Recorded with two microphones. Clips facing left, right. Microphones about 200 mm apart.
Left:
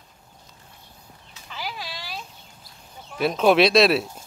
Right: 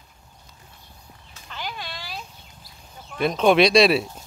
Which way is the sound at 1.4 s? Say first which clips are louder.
Even; 5° left (ahead or behind).